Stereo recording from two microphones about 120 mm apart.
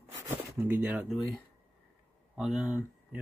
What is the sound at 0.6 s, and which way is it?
Speech, 15° right (ahead or behind).